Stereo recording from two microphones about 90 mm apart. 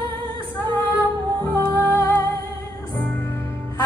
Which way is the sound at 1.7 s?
25° left (ahead or behind).